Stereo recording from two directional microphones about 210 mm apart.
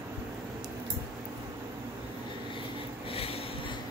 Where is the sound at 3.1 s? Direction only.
25° left (ahead or behind).